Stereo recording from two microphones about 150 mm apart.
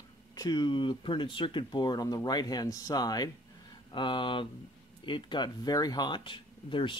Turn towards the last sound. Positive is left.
turn(degrees=35)  # may be behind; listen again after turning